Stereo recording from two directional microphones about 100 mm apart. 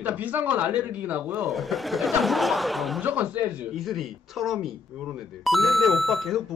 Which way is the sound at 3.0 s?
15° right (ahead or behind).